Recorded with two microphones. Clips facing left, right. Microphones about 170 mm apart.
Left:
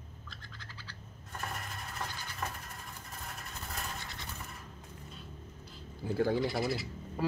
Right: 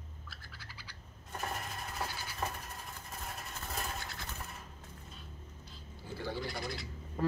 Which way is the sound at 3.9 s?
Centre (ahead or behind).